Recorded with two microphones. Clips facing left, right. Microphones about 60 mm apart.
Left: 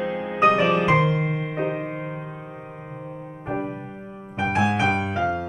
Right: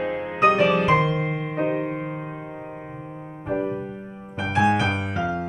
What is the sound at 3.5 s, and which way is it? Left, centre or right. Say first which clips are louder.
Music: right 3 dB; centre.